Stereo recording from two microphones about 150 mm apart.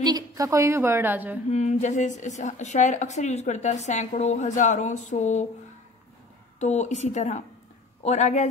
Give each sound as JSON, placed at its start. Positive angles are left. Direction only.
{"t": 0.0, "sound": "a woman's voice", "side_deg": -25}
{"t": 1.5, "sound": "a woman's voice", "side_deg": 50}
{"t": 6.6, "sound": "a woman's voice", "side_deg": 50}